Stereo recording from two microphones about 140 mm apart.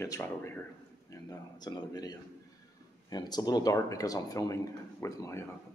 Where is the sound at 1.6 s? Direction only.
30° left (ahead or behind).